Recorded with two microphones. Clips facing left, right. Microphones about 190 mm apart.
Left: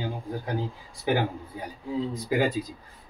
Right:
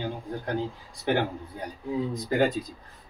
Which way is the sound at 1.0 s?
5° left (ahead or behind).